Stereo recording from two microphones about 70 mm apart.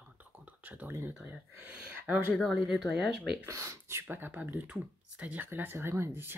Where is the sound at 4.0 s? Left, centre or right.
Right.